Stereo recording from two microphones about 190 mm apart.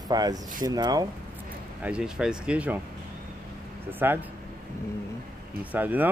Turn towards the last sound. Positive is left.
turn(degrees=-10)  # may be behind; listen again after turning